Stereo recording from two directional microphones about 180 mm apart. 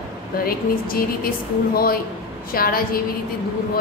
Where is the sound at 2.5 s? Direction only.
55° left (ahead or behind).